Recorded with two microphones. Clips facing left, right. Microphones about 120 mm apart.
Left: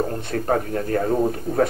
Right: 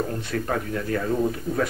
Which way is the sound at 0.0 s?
40° left (ahead or behind).